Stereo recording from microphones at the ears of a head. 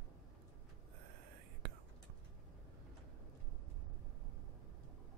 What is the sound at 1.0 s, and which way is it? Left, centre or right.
Whispering, right.